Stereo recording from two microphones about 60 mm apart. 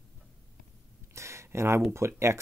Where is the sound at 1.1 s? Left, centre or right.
Right.